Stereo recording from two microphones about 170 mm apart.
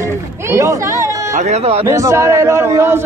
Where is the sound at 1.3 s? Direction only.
40° right (ahead or behind).